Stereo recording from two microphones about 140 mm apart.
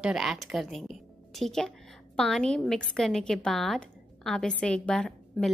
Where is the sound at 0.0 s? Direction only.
5° right (ahead or behind).